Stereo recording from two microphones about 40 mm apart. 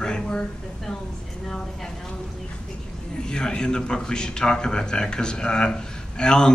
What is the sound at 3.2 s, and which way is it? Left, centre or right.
A man's voice, centre.